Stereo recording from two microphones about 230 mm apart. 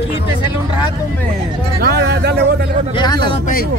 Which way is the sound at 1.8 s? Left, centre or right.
Right.